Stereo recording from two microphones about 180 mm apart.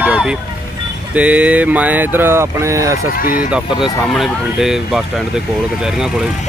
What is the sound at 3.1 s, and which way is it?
Speech, 50° left (ahead or behind).